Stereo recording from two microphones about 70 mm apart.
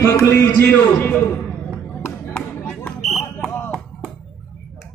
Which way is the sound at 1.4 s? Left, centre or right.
Left.